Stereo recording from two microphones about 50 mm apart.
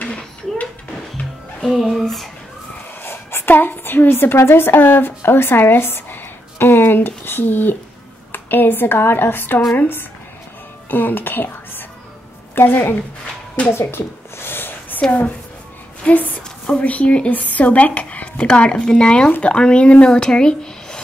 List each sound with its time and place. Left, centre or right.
0.0 s a sound: left
1.6 s speech: centre
3.0 s a woman's voice: left
10.9 s a woman's voice: left
13.7 s a sound: left
15.0 s a woman's voice: left
20.1 s speech: centre